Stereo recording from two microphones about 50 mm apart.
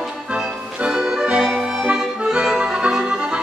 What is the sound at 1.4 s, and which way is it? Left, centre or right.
Accordion, centre.